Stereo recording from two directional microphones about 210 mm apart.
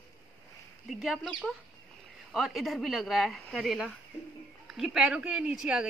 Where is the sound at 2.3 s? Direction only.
Centre (ahead or behind).